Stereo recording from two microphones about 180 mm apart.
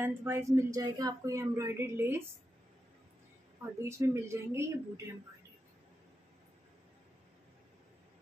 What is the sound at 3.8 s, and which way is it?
Speech, 15° right (ahead or behind).